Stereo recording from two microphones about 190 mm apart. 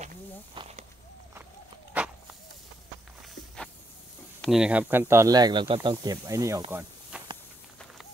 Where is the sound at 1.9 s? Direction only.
5° right (ahead or behind).